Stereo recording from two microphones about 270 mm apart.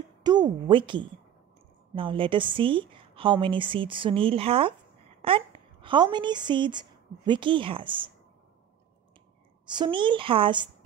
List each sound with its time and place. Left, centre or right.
0.2 s a woman's voice: centre
9.7 s speech: centre